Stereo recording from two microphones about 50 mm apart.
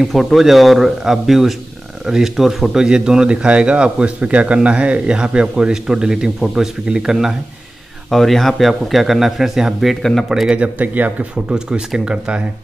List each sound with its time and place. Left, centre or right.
0.0 s a man's voice: centre
8.1 s speech: centre
10.5 s speech: right